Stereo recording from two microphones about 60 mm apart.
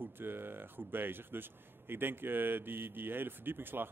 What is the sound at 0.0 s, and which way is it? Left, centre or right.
Speech, right.